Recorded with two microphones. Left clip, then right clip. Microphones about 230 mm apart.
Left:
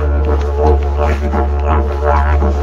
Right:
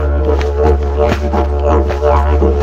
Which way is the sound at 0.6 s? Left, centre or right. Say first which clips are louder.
Even; right.